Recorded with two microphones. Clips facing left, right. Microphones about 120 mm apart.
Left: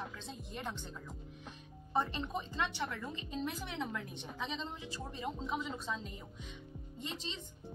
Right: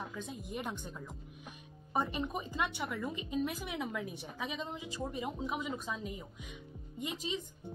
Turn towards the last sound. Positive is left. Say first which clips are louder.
# right 5 dB
turn(degrees=-10)  # may be behind; listen again after turning